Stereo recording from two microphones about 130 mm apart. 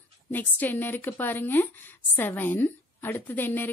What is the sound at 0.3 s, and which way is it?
A woman's voice, 15° left (ahead or behind).